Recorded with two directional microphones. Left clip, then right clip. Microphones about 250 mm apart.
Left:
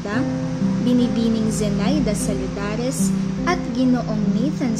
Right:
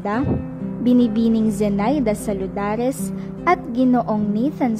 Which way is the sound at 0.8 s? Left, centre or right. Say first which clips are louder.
Right 3 dB; right.